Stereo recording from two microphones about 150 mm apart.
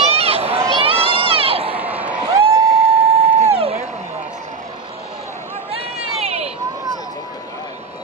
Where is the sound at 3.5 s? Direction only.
40° right (ahead or behind).